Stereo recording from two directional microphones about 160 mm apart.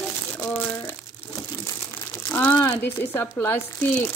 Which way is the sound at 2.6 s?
10° left (ahead or behind).